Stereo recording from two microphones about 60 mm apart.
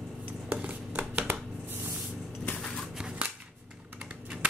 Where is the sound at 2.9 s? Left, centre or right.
Centre.